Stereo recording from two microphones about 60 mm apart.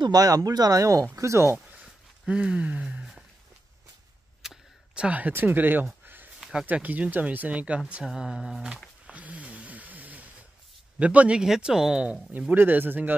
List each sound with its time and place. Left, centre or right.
0.1 s speech: right
1.1 s speech: right
1.8 s a sound: centre
4.4 s a sound: centre
5.0 s speech: right
8.0 s speech: centre
9.1 s a sound: right
11.0 s speech: right
11.4 s speech: centre
12.3 s speech: right